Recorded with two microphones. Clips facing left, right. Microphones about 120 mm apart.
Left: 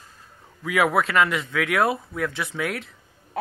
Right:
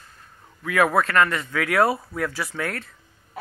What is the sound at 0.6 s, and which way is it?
Speech, 5° left (ahead or behind).